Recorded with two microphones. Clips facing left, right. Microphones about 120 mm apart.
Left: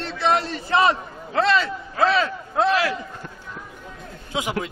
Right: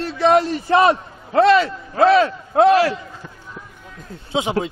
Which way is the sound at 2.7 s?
35° right (ahead or behind).